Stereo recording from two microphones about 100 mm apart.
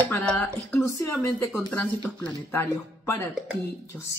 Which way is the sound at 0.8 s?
35° left (ahead or behind).